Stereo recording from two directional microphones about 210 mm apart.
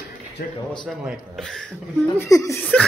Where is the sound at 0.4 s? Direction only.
45° left (ahead or behind).